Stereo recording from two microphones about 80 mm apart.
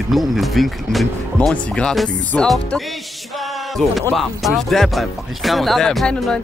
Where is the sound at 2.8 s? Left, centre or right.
Centre.